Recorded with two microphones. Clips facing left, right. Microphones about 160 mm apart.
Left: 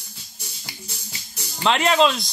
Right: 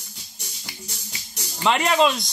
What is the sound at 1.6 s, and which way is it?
Speech, 10° right (ahead or behind).